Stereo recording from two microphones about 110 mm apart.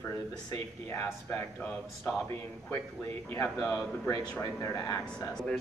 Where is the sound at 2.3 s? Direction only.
25° left (ahead or behind).